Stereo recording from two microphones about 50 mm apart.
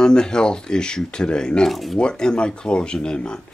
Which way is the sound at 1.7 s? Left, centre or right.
Centre.